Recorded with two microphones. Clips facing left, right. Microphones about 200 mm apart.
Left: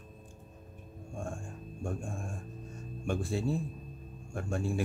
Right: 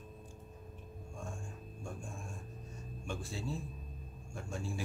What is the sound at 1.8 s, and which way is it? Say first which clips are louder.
Speech: left 9 dB; 55° left (ahead or behind).